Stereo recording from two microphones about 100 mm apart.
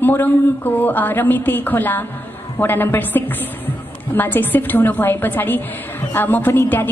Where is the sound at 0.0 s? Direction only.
20° left (ahead or behind).